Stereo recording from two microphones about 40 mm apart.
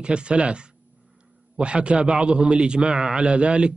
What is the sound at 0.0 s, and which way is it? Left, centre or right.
A man's voice, right.